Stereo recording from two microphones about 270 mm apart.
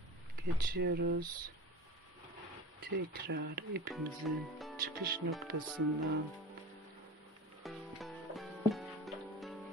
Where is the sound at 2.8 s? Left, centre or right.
Right.